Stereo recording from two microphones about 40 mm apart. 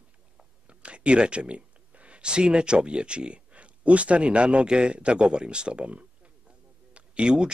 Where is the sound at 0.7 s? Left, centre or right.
Right.